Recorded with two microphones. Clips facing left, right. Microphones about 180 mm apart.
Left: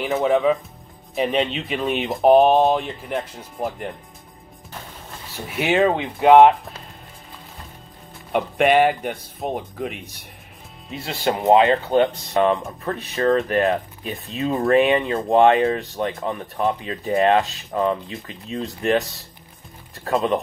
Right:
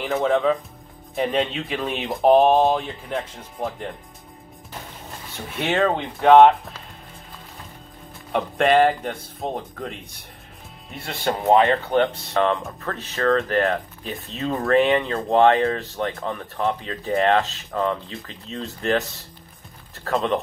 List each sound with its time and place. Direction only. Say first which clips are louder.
0.2 s speech: left 2 dB; 5° left (ahead or behind)
5.5 s speech: left 3 dB; 10° left (ahead or behind)
8.3 s speech: left 1 dB; 5° left (ahead or behind)
11.1 s speech: left 2 dB; 20° left (ahead or behind)